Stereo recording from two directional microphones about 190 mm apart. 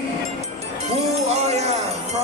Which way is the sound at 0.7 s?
35° right (ahead or behind).